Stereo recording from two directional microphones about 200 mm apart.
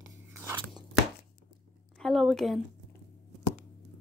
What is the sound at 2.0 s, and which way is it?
Speech, centre (ahead or behind).